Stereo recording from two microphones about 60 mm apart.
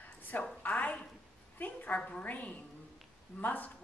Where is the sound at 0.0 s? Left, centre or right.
Left.